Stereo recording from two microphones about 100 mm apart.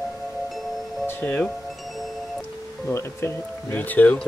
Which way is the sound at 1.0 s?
15° left (ahead or behind).